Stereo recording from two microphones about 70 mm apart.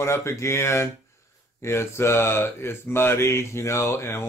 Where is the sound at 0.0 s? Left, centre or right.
Left.